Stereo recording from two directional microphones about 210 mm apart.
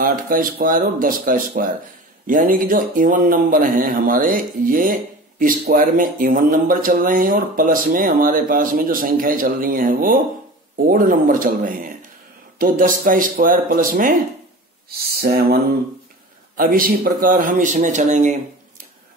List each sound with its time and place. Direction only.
0.0 s speech: 40° right (ahead or behind)